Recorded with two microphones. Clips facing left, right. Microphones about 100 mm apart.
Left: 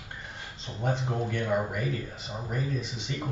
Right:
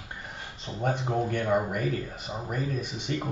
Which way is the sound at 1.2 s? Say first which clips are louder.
Right 1 dB; 45° right (ahead or behind).